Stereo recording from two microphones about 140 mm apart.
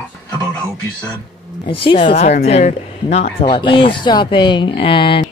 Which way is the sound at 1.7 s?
40° left (ahead or behind).